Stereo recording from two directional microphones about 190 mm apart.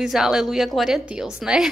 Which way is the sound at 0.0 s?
Centre (ahead or behind).